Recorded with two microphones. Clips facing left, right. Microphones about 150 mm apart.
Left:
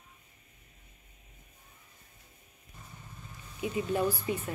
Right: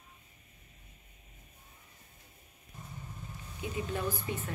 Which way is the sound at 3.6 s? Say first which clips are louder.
Left 6 dB; 15° left (ahead or behind).